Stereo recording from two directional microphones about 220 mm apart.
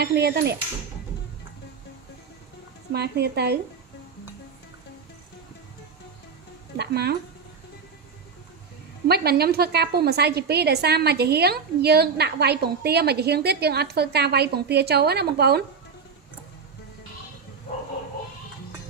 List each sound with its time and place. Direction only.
0.0 s a woman's voice: 45° right (ahead or behind)
2.9 s a woman's voice: 45° right (ahead or behind)
6.8 s a woman's voice: 45° right (ahead or behind)
9.0 s a woman's voice: 45° right (ahead or behind)